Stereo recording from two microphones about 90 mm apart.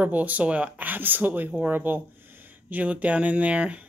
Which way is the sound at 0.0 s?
15° right (ahead or behind).